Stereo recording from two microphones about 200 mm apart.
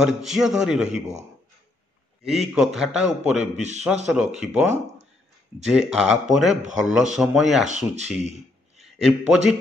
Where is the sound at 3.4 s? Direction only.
35° right (ahead or behind).